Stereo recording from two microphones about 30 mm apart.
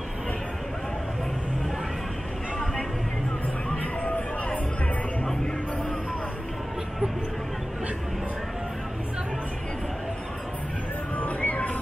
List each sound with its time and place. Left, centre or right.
3.7 s music: left
11.1 s music: left